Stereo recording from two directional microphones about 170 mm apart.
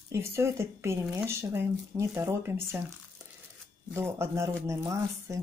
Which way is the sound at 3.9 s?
15° right (ahead or behind).